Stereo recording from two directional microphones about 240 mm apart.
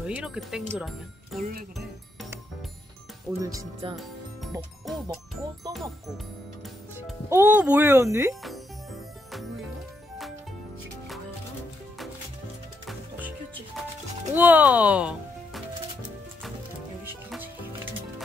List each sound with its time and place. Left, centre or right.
0.0 s speech: centre
1.4 s speech: right
3.3 s speech: centre
3.9 s music: centre
7.0 s speech: centre
8.4 s music: centre
14.3 s speech: centre
17.0 s music: centre